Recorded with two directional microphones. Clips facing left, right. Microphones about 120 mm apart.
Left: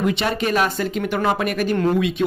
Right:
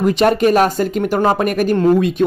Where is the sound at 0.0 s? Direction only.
45° right (ahead or behind).